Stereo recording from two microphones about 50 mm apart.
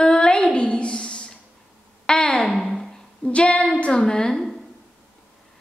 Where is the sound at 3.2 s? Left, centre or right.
Left.